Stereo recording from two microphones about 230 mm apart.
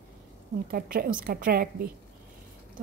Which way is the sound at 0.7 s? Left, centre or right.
Right.